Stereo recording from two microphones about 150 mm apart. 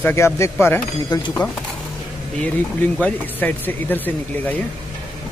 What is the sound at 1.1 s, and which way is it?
Speech, 25° left (ahead or behind).